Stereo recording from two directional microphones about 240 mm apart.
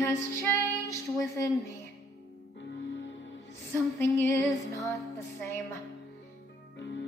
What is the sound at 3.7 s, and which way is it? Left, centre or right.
Music, centre.